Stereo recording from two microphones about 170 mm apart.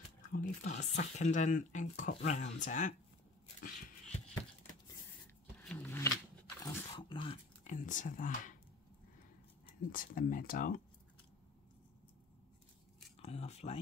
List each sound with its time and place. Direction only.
0.3 s speech: 50° left (ahead or behind)
3.6 s dog: 45° left (ahead or behind)
5.6 s a sound: centre (ahead or behind)
5.9 s shuffling cards: 15° left (ahead or behind)
6.6 s dog: 25° left (ahead or behind)
7.6 s speech: 50° left (ahead or behind)
9.9 s speech: 55° left (ahead or behind)
13.2 s speech: 35° left (ahead or behind)